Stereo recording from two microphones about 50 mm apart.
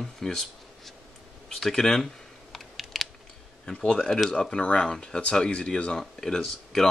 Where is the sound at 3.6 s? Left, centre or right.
Centre.